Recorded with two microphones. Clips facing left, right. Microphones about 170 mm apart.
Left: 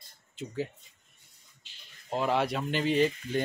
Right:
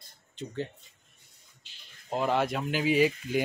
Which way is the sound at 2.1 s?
Centre (ahead or behind).